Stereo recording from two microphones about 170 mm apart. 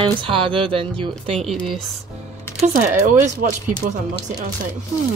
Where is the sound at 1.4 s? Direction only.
Centre (ahead or behind).